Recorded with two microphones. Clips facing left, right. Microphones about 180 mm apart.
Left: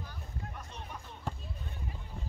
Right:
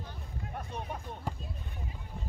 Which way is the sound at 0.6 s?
55° right (ahead or behind).